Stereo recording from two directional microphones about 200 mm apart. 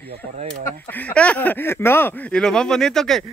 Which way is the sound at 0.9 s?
5° left (ahead or behind).